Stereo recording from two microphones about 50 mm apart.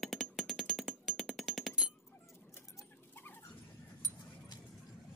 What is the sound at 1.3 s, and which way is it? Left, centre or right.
Jackhammer, centre.